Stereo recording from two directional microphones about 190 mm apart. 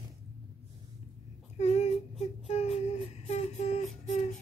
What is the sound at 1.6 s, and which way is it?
Child singing, 35° left (ahead or behind).